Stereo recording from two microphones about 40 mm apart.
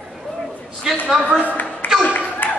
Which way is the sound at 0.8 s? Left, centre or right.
Centre.